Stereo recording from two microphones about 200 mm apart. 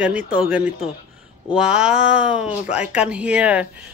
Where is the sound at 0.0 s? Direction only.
5° right (ahead or behind).